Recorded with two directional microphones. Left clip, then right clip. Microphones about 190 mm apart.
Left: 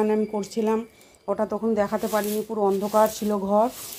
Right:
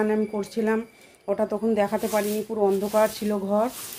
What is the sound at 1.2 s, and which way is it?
Speech, 5° left (ahead or behind).